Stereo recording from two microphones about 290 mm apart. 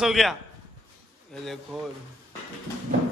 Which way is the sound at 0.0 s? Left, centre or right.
Centre.